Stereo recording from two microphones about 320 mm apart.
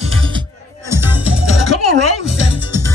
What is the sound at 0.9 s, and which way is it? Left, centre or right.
Music, centre.